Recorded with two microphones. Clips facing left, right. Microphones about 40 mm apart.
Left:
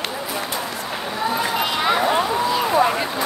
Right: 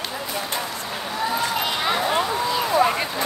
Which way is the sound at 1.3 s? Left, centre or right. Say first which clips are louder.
Left 3 dB; centre.